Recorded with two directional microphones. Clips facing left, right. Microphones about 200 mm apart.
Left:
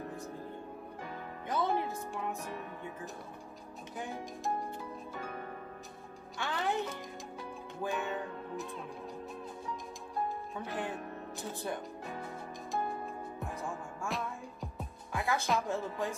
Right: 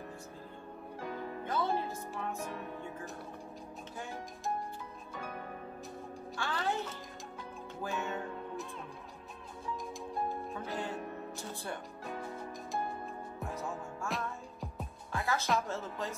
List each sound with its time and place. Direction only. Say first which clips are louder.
1.5 s music: left 2 dB; 15° left (ahead or behind)
6.3 s music: left 1 dB; 20° left (ahead or behind)
7.8 s music: left 2 dB; 15° left (ahead or behind)
10.6 s music: left 2 dB; 15° left (ahead or behind)
13.7 s music: left 1 dB; centre (ahead or behind)
15.1 s music: left 1 dB; 15° left (ahead or behind)
15.4 s music: even; centre (ahead or behind)
15.7 s music: left 3 dB; 15° left (ahead or behind)